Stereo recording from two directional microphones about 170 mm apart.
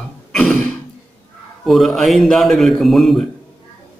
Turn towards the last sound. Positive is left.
turn(degrees=0)  # may be behind; listen again after turning